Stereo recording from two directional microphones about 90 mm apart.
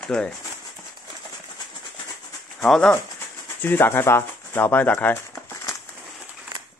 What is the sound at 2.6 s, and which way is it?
Speech, 10° left (ahead or behind).